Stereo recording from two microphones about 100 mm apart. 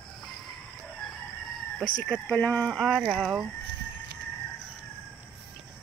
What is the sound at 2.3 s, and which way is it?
Speech, 15° left (ahead or behind).